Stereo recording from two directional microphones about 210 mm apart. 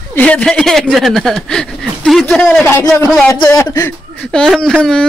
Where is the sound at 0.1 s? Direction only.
5° left (ahead or behind).